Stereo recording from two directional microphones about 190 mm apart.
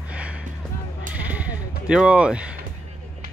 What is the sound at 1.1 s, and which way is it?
Sheep, 10° right (ahead or behind).